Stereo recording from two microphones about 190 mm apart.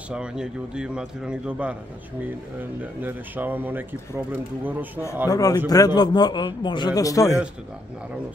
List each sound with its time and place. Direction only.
0.1 s a man's voice: 5° right (ahead or behind)
2.8 s speech: 10° right (ahead or behind)
5.3 s a man's voice: 20° left (ahead or behind)